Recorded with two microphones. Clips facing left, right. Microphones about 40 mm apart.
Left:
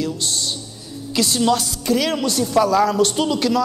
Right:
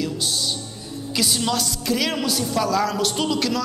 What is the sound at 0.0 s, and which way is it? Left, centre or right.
Music, centre.